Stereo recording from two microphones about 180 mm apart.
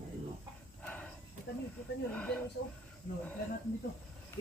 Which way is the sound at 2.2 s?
5° left (ahead or behind).